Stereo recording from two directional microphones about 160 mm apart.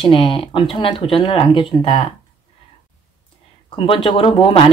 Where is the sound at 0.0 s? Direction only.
35° left (ahead or behind).